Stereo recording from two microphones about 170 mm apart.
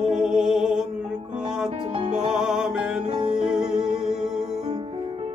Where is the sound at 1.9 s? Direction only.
40° right (ahead or behind).